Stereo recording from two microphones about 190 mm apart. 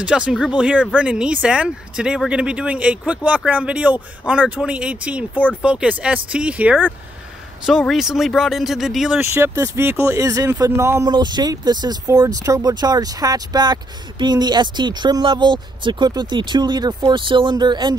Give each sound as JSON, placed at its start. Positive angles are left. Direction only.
{"t": 0.0, "sound": "speech", "side_deg": -5}
{"t": 9.2, "sound": "speech", "side_deg": -15}